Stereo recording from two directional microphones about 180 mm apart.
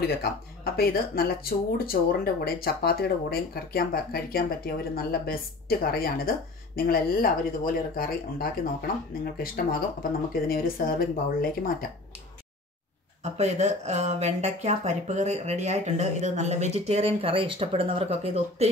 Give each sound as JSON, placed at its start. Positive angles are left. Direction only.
{"t": 0.7, "sound": "speech", "side_deg": 55}
{"t": 13.2, "sound": "speech", "side_deg": -40}